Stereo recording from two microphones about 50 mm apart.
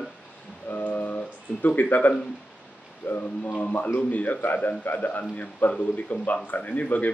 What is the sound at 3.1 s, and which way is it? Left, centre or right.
A man's voice, left.